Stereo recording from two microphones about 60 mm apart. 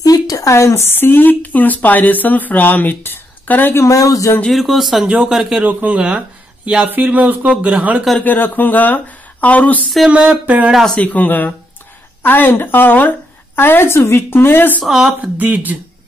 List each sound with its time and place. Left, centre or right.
0.0 s a sound: left
0.8 s speech: left
3.7 s speech: left
4.5 s a man's voice: centre
5.0 s a man's voice: centre
8.2 s speech: left
10.0 s a man's voice: centre
10.4 s speech: right
10.7 s a man's voice: centre
11.0 s a woman's voice: left
14.9 s a man's voice: centre
15.3 s speech: right